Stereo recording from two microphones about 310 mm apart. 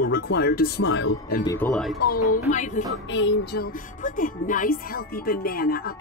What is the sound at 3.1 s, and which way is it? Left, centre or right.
Speech, left.